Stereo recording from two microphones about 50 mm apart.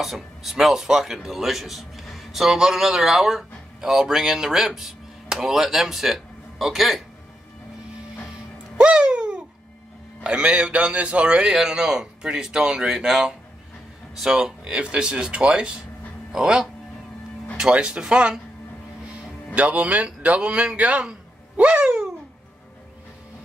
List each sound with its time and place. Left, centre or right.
0.0 s speech: centre
8.7 s music: centre
10.2 s speech: right
11.4 s speech: centre
19.5 s speech: right
21.0 s a sound: right